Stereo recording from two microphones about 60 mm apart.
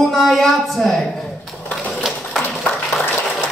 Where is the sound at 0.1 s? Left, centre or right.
Centre.